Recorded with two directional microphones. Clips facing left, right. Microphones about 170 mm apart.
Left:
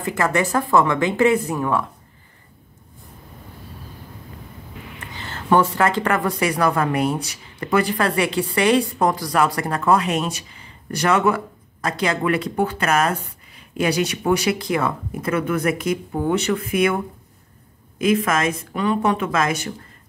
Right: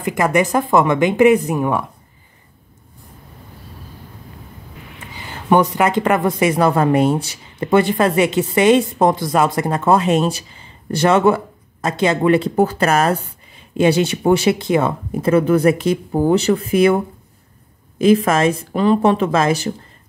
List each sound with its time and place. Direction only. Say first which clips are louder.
0.0 s speech: right 4 dB; 15° right (ahead or behind)
5.1 s speech: right 3 dB; 10° right (ahead or behind); by 19.7 s 30° right (ahead or behind)